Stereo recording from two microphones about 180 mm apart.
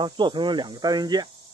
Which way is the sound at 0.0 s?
25° right (ahead or behind).